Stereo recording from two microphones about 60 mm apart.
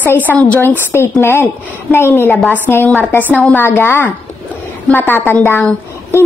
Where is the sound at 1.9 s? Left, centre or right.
Left.